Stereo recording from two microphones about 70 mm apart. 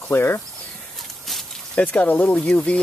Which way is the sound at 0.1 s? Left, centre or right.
Left.